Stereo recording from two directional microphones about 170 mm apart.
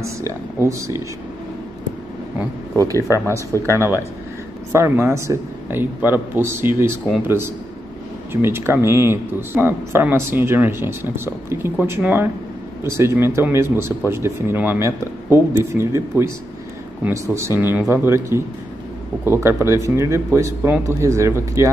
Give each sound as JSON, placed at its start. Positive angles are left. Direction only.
{"t": 0.0, "sound": "speech", "side_deg": -15}
{"t": 2.7, "sound": "speech", "side_deg": -20}
{"t": 3.5, "sound": "speech", "side_deg": 15}
{"t": 4.7, "sound": "speech", "side_deg": -15}